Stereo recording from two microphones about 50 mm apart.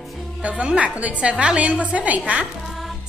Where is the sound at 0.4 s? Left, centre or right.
Right.